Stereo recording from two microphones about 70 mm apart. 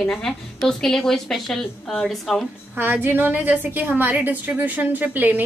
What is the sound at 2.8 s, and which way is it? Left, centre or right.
A woman's voice, right.